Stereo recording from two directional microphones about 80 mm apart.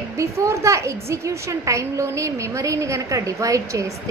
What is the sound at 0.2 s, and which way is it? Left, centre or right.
A woman's voice, right.